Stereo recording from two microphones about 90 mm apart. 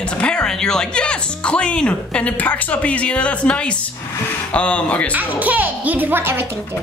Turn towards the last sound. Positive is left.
turn(degrees=-25)  # may be behind; listen again after turning